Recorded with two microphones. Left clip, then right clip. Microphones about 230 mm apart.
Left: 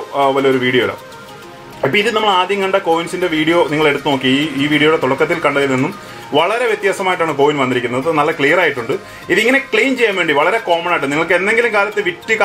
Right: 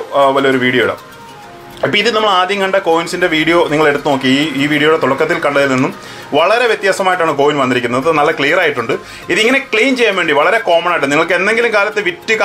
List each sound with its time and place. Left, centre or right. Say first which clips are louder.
0.1 s speech: right 3 dB; right